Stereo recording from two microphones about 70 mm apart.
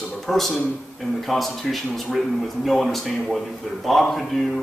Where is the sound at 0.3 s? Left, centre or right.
Centre.